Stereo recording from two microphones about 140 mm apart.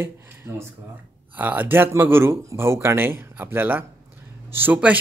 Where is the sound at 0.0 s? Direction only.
15° right (ahead or behind).